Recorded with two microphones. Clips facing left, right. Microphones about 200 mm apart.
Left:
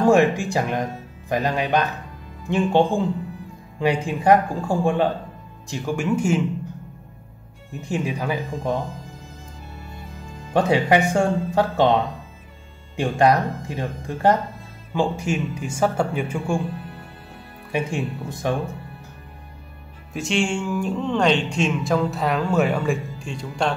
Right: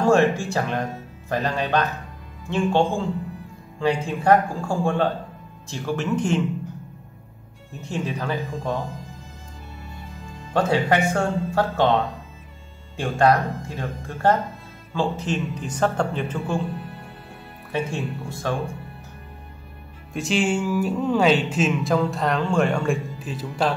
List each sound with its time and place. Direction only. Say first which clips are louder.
0.0 s speech: left 2 dB; 15° left (ahead or behind)
7.9 s speech: left 2 dB; 10° left (ahead or behind)
10.5 s speech: left 2 dB; 15° left (ahead or behind)
17.6 s speech: left 2 dB; 15° left (ahead or behind)
20.1 s speech: right 1 dB; centre (ahead or behind)